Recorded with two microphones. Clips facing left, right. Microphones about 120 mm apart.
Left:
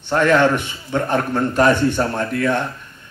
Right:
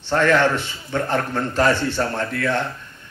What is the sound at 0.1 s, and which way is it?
A man's voice, 20° left (ahead or behind).